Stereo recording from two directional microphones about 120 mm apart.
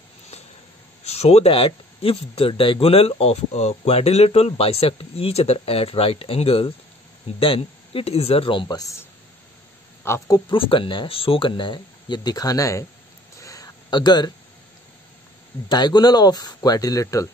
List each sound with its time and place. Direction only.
1.0 s speech: 65° left (ahead or behind); by 9.0 s 30° left (ahead or behind)
10.0 s speech: 25° left (ahead or behind)
10.5 s speech: 45° left (ahead or behind); by 12.8 s 30° left (ahead or behind)
13.4 s a sound: 30° left (ahead or behind)
15.7 s speech: 35° left (ahead or behind)